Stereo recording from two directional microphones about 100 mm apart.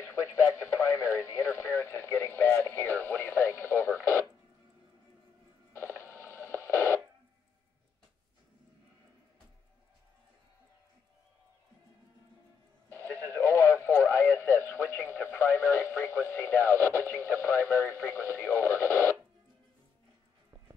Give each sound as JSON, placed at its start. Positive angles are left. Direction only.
{"t": 0.0, "sound": "speech", "side_deg": 30}
{"t": 5.7, "sound": "radio", "side_deg": 25}
{"t": 12.9, "sound": "radio", "side_deg": 20}